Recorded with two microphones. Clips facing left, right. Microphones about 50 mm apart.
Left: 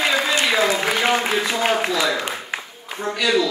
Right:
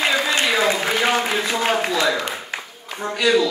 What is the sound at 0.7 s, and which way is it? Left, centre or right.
Speech, centre.